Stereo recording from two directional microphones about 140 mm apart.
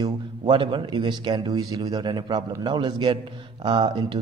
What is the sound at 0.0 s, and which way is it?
A man's voice, 35° right (ahead or behind).